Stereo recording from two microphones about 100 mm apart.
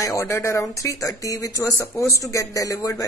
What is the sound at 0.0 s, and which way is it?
A woman's voice, 30° left (ahead or behind).